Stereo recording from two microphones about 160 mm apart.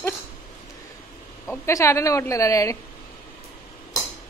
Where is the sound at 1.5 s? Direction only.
20° left (ahead or behind).